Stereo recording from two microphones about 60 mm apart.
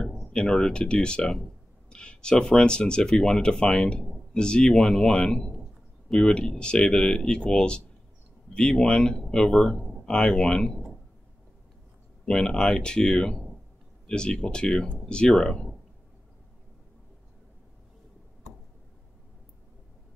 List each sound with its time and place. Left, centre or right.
0.3 s speech: centre
10.0 s speech: centre
12.3 s speech: centre